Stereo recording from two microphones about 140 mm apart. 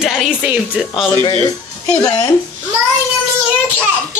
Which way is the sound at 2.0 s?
25° left (ahead or behind).